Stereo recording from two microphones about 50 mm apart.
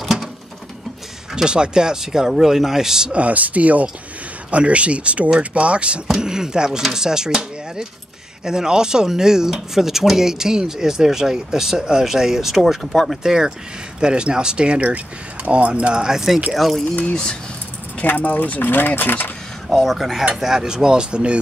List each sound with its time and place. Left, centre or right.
0.0 s a sound: centre
1.3 s speech: centre
3.1 s speech: right
6.0 s speech: centre
13.1 s speech: centre
17.0 s speech: centre
18.0 s speech: left
19.7 s speech: centre; by 21.4 s right